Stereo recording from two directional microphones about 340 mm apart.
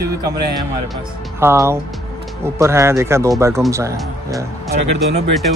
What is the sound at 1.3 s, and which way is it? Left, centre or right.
Speech, centre.